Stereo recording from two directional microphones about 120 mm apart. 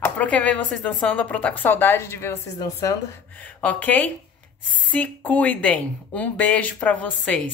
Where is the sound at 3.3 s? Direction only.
10° left (ahead or behind).